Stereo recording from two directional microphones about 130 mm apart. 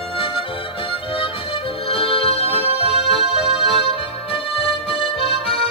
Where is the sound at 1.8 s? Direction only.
45° left (ahead or behind).